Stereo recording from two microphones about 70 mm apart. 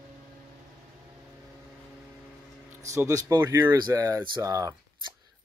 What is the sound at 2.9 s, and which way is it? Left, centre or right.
Speech, right.